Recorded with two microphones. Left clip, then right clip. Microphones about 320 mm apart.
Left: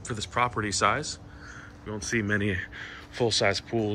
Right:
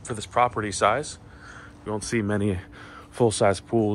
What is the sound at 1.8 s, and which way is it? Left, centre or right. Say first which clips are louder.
Speech: right 3 dB; centre.